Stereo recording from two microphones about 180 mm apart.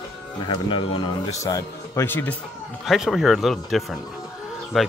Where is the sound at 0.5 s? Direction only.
30° left (ahead or behind); by 2.3 s 10° left (ahead or behind).